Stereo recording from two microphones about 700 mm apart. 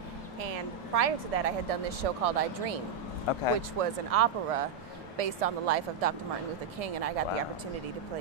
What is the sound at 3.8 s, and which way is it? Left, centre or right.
Speech, right.